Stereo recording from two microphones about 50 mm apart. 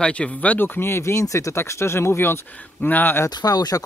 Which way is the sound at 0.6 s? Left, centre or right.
Left.